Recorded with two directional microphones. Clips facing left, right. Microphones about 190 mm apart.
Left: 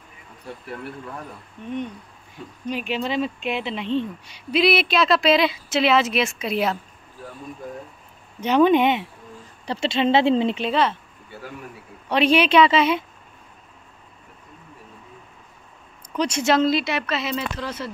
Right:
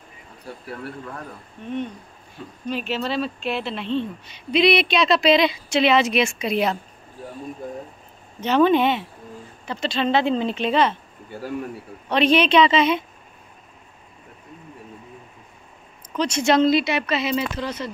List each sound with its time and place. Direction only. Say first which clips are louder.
2.7 s speech: even; 15° left (ahead or behind)
8.4 s speech: left 1 dB; 10° left (ahead or behind)
9.7 s speech: left 2 dB; 25° left (ahead or behind)
10.5 s speech: right 2 dB; 5° left (ahead or behind)
12.1 s speech: even; 10° left (ahead or behind)
16.1 s speech: right 1 dB; 10° left (ahead or behind)